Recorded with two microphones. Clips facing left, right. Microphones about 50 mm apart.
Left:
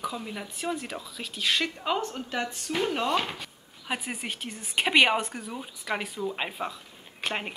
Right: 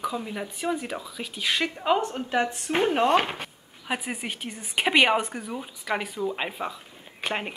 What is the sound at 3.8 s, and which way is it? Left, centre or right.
A woman's voice, centre.